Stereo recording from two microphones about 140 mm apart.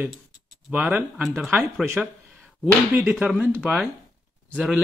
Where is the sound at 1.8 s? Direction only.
15° right (ahead or behind).